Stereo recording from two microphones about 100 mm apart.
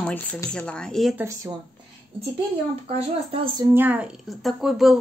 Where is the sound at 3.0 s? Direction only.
70° right (ahead or behind).